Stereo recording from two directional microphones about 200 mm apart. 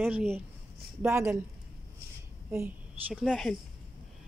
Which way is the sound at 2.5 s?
10° right (ahead or behind).